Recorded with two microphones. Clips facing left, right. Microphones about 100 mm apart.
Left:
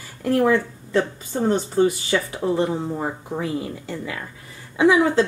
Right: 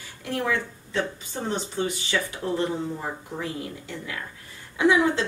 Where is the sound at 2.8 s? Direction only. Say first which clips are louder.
Left 5 dB; 45° left (ahead or behind).